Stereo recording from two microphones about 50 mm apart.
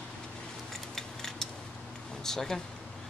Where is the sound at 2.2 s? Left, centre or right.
Centre.